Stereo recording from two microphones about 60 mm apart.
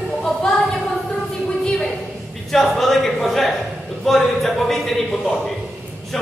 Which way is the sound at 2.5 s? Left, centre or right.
Centre.